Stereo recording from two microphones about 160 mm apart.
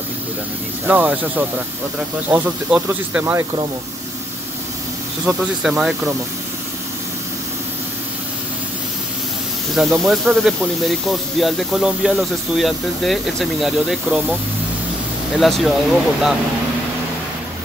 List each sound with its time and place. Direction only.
0.8 s speech: 10° right (ahead or behind)
5.2 s speech: 5° right (ahead or behind)
9.8 s speech: centre (ahead or behind)
15.3 s speech: centre (ahead or behind)